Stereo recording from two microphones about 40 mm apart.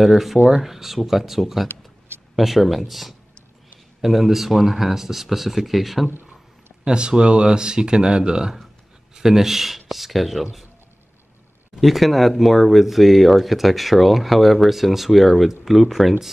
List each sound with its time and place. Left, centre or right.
0.0 s speech: centre
6.8 s speech: right; by 10.6 s centre
11.8 s speech: centre